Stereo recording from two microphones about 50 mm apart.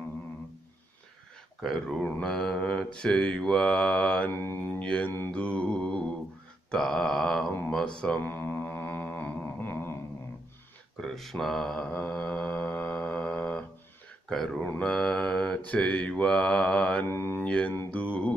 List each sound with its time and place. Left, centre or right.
1.6 s speech: centre
2.2 s mantra: centre
4.3 s mantra: left
4.6 s mantra: left
6.7 s mantra: centre
7.8 s mantra: left
8.2 s music: left
11.0 s mantra: centre; by 13.7 s left
14.3 s speech: centre
14.8 s mantra: centre
17.1 s mantra: left
17.5 s mantra: left